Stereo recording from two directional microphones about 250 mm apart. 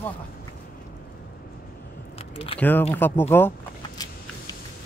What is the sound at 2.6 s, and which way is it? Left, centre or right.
Speech, centre.